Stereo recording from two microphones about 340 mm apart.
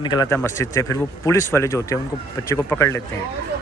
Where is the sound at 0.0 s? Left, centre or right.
Centre.